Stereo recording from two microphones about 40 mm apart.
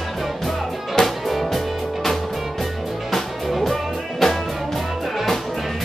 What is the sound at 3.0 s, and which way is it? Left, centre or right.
Music, centre.